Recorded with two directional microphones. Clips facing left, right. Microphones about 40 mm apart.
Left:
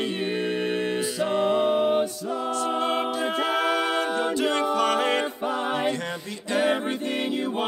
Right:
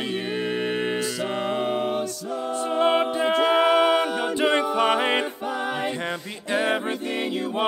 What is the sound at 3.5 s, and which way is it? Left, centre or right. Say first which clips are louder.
Music: right 7 dB; right.